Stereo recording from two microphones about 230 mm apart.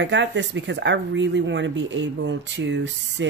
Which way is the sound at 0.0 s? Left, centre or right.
Right.